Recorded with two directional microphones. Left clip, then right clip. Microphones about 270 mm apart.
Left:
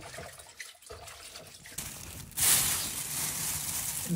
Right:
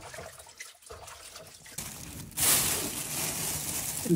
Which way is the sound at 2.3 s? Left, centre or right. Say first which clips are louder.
Right 1 dB; centre.